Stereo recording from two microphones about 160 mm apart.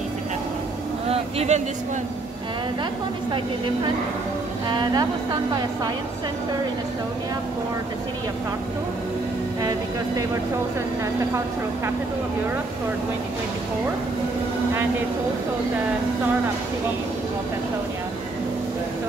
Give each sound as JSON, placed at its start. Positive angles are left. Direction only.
{"t": 1.0, "sound": "a sound", "side_deg": -40}
{"t": 4.6, "sound": "a woman's voice", "side_deg": -30}
{"t": 9.6, "sound": "speech", "side_deg": -25}